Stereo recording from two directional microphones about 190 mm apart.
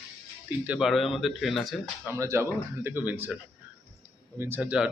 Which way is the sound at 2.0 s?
15° right (ahead or behind).